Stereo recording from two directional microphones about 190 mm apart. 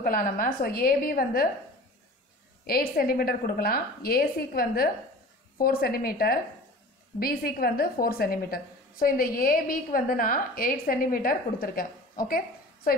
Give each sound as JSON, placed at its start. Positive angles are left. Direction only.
{"t": 0.0, "sound": "a woman's voice", "side_deg": 45}
{"t": 2.6, "sound": "a woman's voice", "side_deg": 50}